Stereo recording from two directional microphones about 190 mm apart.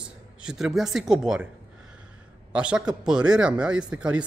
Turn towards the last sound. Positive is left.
turn(degrees=-5)  # may be behind; listen again after turning